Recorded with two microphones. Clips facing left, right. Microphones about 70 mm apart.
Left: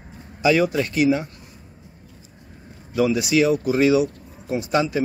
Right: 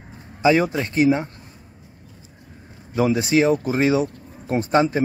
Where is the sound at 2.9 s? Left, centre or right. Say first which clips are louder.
Right 1 dB; right.